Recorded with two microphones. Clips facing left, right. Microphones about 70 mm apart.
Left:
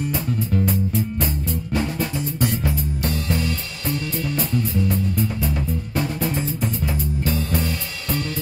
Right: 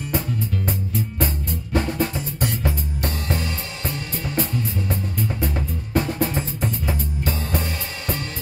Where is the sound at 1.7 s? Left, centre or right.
Right.